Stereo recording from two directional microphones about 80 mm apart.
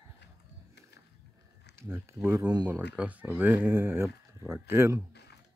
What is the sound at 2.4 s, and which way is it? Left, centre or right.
Speech, right.